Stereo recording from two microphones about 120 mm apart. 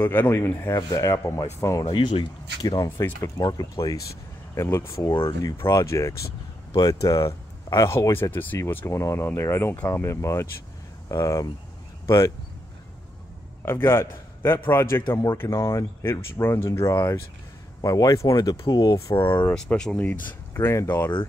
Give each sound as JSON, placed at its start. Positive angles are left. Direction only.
{"t": 0.0, "sound": "speech", "side_deg": 15}
{"t": 1.9, "sound": "speech", "side_deg": 45}
{"t": 2.6, "sound": "speech", "side_deg": 30}
{"t": 13.7, "sound": "speech", "side_deg": 20}
{"t": 19.5, "sound": "speech", "side_deg": 5}